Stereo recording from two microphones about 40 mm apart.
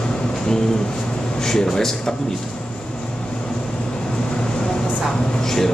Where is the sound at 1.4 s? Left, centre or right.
Centre.